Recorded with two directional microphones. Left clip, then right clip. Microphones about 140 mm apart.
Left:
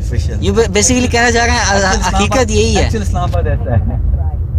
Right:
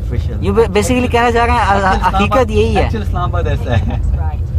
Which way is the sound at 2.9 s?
90° left.